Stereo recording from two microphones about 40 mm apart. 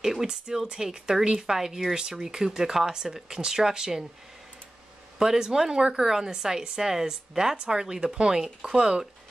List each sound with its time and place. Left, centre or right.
0.0 s speech: centre
5.2 s speech: centre